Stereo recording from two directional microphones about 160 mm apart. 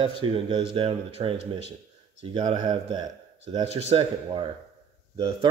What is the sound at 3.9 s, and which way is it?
Speech, 35° right (ahead or behind).